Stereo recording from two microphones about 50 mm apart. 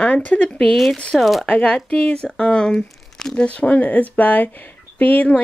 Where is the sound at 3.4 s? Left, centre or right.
Left.